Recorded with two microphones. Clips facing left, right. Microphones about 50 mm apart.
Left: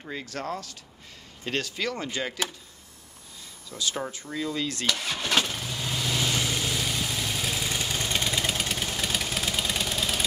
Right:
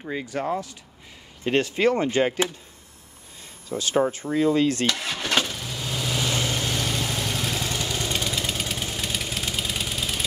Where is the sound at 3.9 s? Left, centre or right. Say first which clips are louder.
Right 10 dB; right.